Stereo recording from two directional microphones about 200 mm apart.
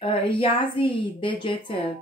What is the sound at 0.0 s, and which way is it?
A woman's voice, 25° left (ahead or behind).